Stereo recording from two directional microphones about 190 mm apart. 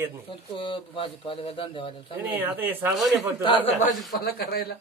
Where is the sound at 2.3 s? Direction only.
10° right (ahead or behind).